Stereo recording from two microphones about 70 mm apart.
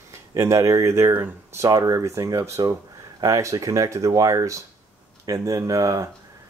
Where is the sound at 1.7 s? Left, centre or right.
Right.